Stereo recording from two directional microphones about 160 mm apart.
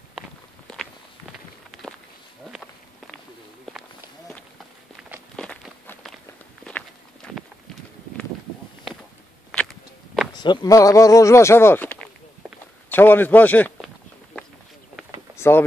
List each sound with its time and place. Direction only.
0.7 s walk: 5° left (ahead or behind)
5.3 s walk: 5° left (ahead or behind)
7.2 s walk: 5° left (ahead or behind)
9.5 s a sound: centre (ahead or behind)
10.3 s speech: 25° left (ahead or behind); by 12.1 s 10° left (ahead or behind)
12.4 s a sound: 5° right (ahead or behind)
12.9 s speech: 10° left (ahead or behind)
15.3 s vehicle: 15° left (ahead or behind)